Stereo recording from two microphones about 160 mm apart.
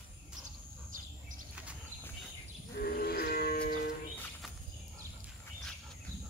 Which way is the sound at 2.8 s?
75° left (ahead or behind).